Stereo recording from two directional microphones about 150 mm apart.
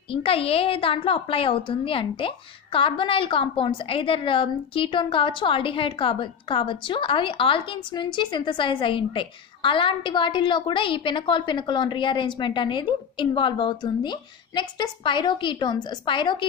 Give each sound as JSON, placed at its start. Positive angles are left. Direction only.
{"t": 0.1, "sound": "a woman's voice", "side_deg": 40}